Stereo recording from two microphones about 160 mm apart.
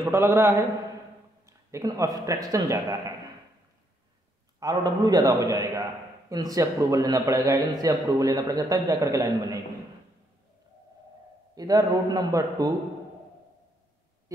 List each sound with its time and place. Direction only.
0.0 s a man's voice: 15° right (ahead or behind)
1.4 s a sound: 20° right (ahead or behind)
2.2 s a man's voice: 20° right (ahead or behind)
4.6 s a man's voice: 25° right (ahead or behind)
11.5 s a man's voice: 25° right (ahead or behind)